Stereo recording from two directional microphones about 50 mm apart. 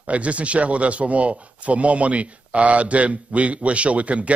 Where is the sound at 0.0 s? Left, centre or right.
Right.